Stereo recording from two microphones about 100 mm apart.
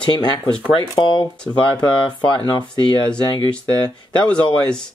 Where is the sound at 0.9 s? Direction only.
55° left (ahead or behind).